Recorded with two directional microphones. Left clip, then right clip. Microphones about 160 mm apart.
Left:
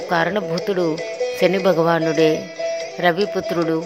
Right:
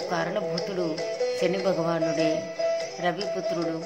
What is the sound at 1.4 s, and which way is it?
Speech, 45° left (ahead or behind).